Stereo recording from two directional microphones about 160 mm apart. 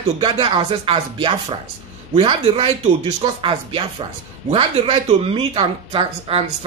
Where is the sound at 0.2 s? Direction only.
35° right (ahead or behind).